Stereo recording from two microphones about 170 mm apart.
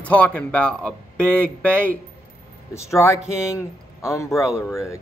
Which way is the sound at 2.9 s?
15° left (ahead or behind).